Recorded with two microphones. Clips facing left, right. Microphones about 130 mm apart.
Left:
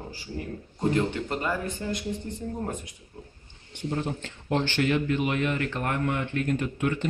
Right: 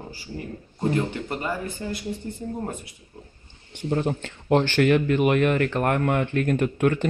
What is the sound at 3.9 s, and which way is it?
Speech, 60° right (ahead or behind).